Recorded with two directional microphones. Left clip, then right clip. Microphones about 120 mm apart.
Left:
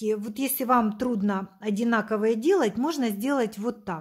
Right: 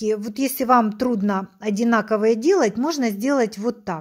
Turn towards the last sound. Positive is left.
turn(degrees=-25)  # may be behind; listen again after turning